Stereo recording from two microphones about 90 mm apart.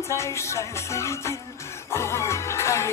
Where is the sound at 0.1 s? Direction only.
35° left (ahead or behind).